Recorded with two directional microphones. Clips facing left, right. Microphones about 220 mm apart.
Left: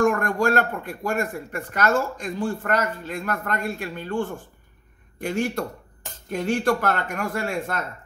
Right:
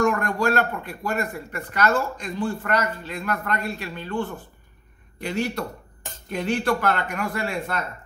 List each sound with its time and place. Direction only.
0.0 s speech: 50° left (ahead or behind)